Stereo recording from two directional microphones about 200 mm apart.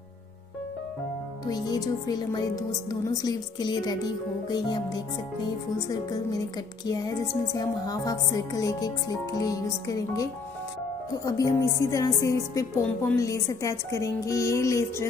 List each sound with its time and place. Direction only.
1.5 s speech: 20° left (ahead or behind)
11.2 s speech: 15° left (ahead or behind)